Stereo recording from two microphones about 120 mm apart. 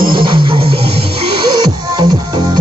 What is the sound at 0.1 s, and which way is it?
Music, 45° right (ahead or behind).